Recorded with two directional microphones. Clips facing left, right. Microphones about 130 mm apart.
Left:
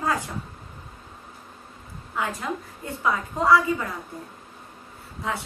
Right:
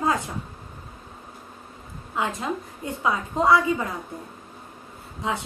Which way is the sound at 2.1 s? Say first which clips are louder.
Right 2 dB; 20° right (ahead or behind).